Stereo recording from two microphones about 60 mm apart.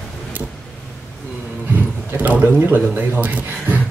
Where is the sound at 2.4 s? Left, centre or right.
Right.